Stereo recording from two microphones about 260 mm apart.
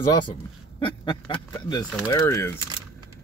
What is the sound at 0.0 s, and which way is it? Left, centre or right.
Speech, centre.